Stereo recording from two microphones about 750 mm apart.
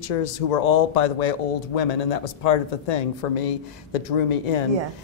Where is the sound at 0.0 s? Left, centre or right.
Left.